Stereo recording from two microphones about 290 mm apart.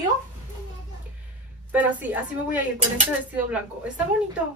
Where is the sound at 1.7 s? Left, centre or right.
Centre.